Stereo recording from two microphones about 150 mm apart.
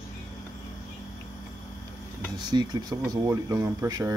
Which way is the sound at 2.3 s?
30° right (ahead or behind).